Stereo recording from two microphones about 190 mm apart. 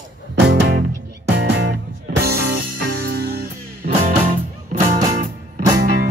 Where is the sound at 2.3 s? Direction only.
55° right (ahead or behind).